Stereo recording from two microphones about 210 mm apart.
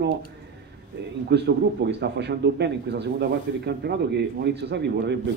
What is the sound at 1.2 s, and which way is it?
A man's voice, 55° right (ahead or behind).